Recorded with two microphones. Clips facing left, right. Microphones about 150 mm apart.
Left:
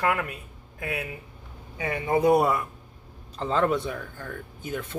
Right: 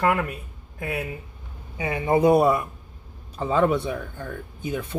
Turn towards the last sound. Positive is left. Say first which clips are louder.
# right 4 dB
turn(degrees=-15)  # may be behind; listen again after turning